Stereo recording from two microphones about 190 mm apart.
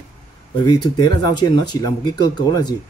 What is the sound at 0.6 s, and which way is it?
Speech, 20° left (ahead or behind).